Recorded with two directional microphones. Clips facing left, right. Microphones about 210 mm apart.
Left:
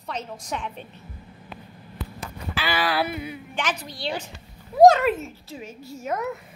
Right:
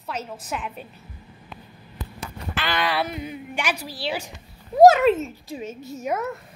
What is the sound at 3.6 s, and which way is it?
A woman's voice, 10° right (ahead or behind).